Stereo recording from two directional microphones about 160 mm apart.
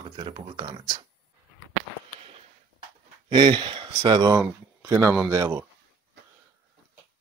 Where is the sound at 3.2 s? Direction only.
30° right (ahead or behind).